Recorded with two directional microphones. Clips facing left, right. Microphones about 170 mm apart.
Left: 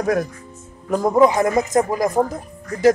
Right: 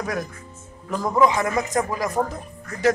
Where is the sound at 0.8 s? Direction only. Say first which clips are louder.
Left 5 dB; 45° left (ahead or behind).